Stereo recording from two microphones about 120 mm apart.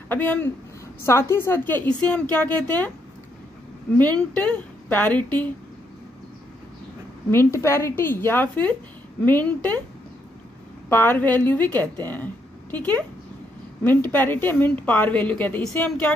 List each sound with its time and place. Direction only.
0.1 s a woman's voice: 15° left (ahead or behind)
4.0 s a woman's voice: 10° left (ahead or behind)
7.2 s a woman's voice: 20° left (ahead or behind)
10.9 s a woman's voice: 15° left (ahead or behind)